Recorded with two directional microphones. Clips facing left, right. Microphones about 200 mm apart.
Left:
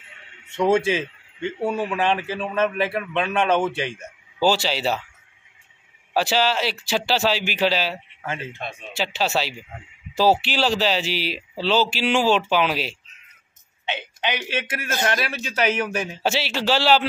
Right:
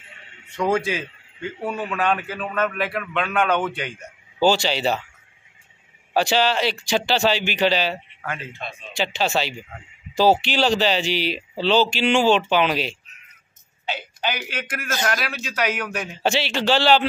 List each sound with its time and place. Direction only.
0.5 s a man's voice: 25° left (ahead or behind)
4.4 s speech: 5° left (ahead or behind)
6.1 s speech: 5° left (ahead or behind)
8.6 s speech: 55° left (ahead or behind)
8.9 s speech: 5° left (ahead or behind)
13.8 s a man's voice: 20° left (ahead or behind)
16.2 s speech: 5° left (ahead or behind)